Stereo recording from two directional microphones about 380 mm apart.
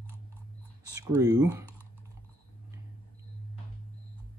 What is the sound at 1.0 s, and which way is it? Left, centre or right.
Speech, centre.